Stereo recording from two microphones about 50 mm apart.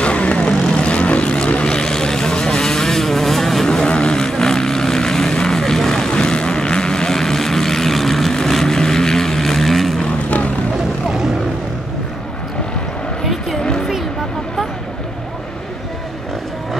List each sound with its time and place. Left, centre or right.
0.0 s vehicle: left; by 10.0 s centre
10.0 s vehicle: left
11.1 s vehicle: centre
13.2 s vehicle: centre
13.6 s a sound: centre